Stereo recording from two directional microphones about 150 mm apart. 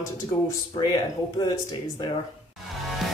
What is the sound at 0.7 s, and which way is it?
Speech, 25° left (ahead or behind).